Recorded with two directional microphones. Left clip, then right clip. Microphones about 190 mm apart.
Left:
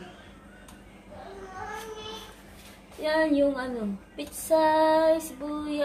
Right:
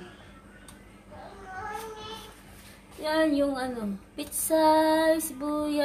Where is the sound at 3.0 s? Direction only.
30° right (ahead or behind).